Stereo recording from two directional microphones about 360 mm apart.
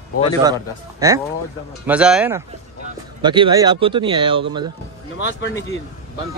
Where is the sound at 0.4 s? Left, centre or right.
Centre.